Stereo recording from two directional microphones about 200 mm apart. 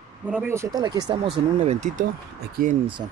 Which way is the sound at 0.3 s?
10° right (ahead or behind).